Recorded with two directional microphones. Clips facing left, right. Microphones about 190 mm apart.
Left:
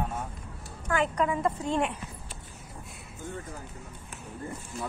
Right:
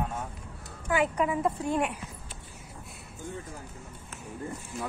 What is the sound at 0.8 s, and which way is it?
A woman's voice, 10° right (ahead or behind).